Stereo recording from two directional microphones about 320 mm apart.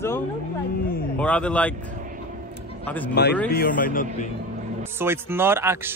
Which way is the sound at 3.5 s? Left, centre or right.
Left.